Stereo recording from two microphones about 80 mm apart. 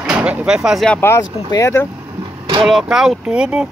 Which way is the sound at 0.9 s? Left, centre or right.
Left.